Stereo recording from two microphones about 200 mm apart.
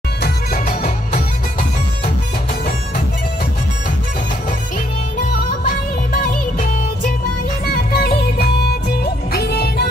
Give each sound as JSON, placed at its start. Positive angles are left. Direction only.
{"t": 0.2, "sound": "music", "side_deg": 45}
{"t": 7.6, "sound": "music", "side_deg": 50}